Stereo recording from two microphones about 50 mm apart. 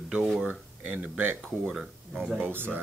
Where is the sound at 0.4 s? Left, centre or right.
Right.